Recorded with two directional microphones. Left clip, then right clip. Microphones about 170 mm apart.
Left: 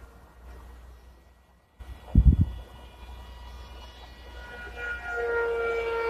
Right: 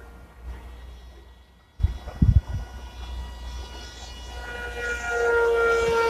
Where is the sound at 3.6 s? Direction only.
10° right (ahead or behind).